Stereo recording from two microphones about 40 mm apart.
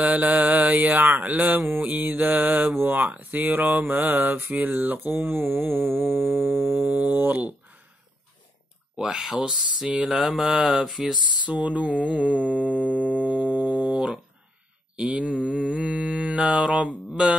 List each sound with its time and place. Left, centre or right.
0.0 s mantra: right
2.7 s mantra: right
7.1 s mantra: right
8.9 s speech: centre
9.9 s mantra: centre
11.4 s mantra: right
15.0 s mantra: right